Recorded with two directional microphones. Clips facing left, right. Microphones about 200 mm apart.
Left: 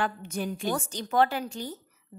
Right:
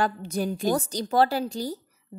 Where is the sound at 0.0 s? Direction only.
35° right (ahead or behind).